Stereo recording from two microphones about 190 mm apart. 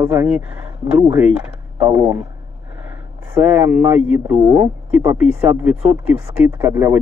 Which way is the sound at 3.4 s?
15° right (ahead or behind).